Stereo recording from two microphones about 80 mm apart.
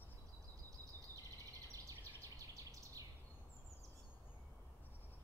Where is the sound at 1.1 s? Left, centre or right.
Right.